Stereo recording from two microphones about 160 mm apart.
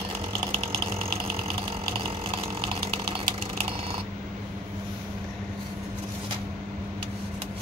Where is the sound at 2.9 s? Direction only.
35° right (ahead or behind).